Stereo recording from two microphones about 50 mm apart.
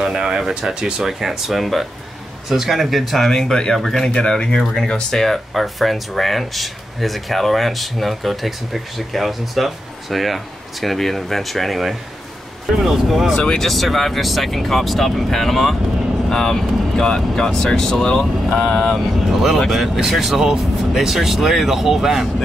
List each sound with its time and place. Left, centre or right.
0.0 s speech: centre
4.6 s speech: centre